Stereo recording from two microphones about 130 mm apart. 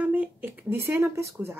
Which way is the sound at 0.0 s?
10° right (ahead or behind).